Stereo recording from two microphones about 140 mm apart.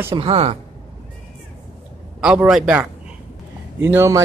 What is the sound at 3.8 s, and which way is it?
Speech, 20° right (ahead or behind).